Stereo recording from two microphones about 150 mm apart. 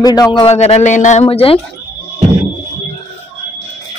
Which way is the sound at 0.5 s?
45° left (ahead or behind).